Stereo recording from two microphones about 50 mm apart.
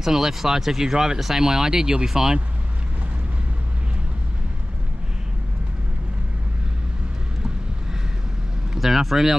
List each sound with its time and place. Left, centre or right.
0.0 s speech: centre
8.7 s speech: centre